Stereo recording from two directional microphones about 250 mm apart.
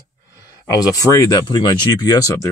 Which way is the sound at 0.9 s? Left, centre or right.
Centre.